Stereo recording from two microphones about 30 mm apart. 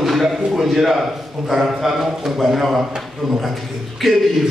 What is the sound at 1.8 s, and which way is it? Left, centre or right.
A man's voice, centre.